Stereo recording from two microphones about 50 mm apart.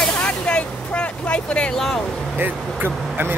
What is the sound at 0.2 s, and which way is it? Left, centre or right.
Vehicle, left.